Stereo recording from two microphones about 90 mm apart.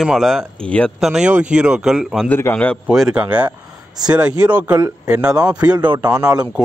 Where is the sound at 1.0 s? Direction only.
5° right (ahead or behind).